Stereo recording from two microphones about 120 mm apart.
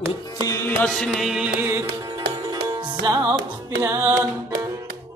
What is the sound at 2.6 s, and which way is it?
Music, 40° right (ahead or behind).